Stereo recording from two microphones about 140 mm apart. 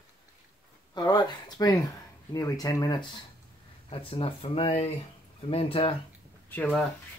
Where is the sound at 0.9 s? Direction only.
30° left (ahead or behind).